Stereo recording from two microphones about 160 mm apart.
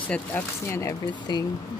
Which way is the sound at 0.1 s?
15° left (ahead or behind).